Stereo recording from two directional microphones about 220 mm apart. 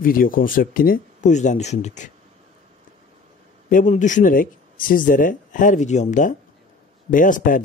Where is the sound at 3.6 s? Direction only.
35° left (ahead or behind).